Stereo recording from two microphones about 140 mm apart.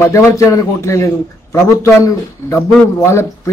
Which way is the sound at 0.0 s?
20° left (ahead or behind).